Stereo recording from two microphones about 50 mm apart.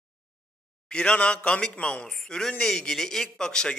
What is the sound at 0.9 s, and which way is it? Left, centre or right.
A man's voice, left.